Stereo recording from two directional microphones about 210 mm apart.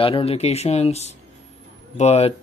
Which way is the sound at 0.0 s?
25° left (ahead or behind).